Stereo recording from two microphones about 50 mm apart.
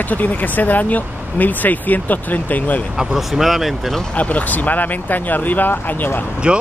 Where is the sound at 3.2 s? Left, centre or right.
Centre.